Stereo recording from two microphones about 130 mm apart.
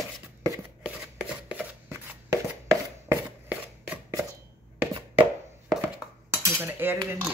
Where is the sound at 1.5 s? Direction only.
10° right (ahead or behind).